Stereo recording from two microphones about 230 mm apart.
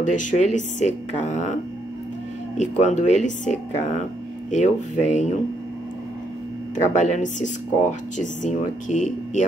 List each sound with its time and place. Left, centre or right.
0.0 s speech: left
6.7 s speech: left